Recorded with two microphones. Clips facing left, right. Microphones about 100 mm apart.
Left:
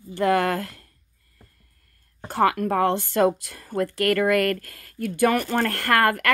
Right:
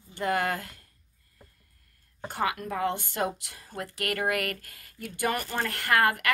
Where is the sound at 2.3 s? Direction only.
65° left (ahead or behind).